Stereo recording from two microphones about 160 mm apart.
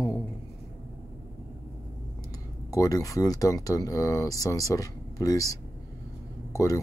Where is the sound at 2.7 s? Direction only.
20° left (ahead or behind).